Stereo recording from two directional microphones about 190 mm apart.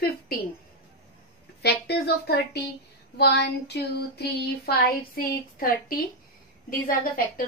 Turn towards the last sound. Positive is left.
turn(degrees=50)  # may be behind; listen again after turning